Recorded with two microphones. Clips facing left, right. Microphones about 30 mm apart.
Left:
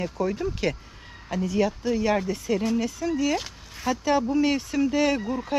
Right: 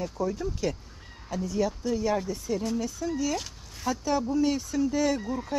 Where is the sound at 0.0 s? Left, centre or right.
Left.